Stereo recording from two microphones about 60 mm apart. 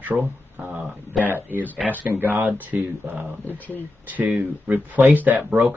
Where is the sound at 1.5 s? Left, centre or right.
Right.